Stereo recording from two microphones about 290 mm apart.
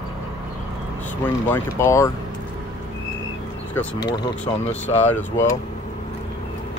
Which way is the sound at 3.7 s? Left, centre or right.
Centre.